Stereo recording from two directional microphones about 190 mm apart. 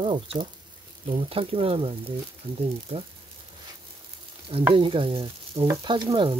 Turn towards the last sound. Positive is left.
turn(degrees=-25)  # may be behind; listen again after turning